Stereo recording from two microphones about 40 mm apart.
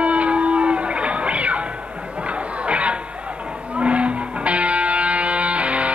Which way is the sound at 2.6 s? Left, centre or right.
Right.